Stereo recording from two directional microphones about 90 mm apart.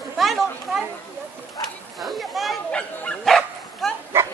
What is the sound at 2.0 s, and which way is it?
Speech, centre (ahead or behind).